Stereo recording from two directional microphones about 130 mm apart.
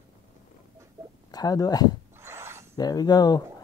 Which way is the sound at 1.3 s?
30° left (ahead or behind).